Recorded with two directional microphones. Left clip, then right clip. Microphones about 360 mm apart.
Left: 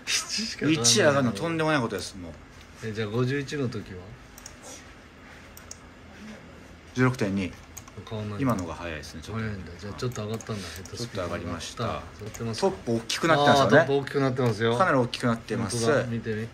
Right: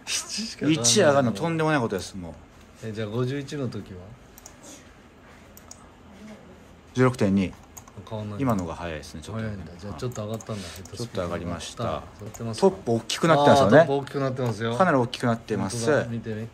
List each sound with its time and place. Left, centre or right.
0.0 s speech: centre
0.8 s speech: right
2.8 s speech: centre
6.9 s speech: right
8.0 s speech: centre
8.4 s speech: right
9.3 s speech: centre
10.5 s speech: right
13.8 s speech: centre
14.8 s speech: right
16.1 s speech: centre